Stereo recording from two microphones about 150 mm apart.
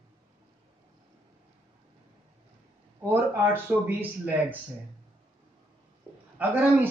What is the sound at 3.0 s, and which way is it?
A man's voice, 15° right (ahead or behind).